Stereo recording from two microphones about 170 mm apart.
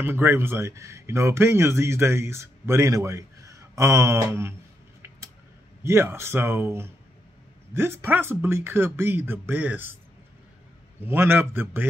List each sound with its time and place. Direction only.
0.0 s speech: 15° right (ahead or behind)
5.9 s speech: 15° right (ahead or behind)
11.0 s speech: 15° right (ahead or behind)